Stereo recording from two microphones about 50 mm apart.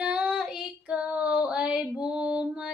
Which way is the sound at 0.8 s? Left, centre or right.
Right.